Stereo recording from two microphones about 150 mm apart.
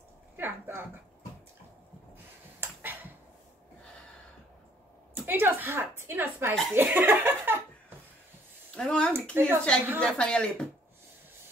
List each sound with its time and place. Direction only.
0.4 s speech: 15° right (ahead or behind)
2.6 s a sound: 10° right (ahead or behind)
5.2 s a woman's voice: 15° right (ahead or behind)
8.7 s speech: 5° left (ahead or behind)
9.3 s a woman's voice: 15° right (ahead or behind)
9.9 s a woman's voice: 5° left (ahead or behind)